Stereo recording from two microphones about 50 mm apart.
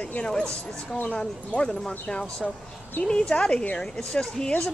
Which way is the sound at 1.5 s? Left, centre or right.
Centre.